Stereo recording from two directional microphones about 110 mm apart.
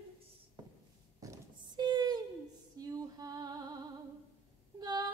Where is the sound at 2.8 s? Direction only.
35° right (ahead or behind).